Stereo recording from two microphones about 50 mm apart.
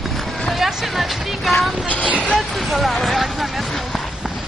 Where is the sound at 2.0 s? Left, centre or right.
Right.